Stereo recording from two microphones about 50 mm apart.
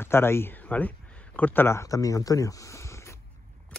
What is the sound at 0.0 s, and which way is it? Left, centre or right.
Speech, left.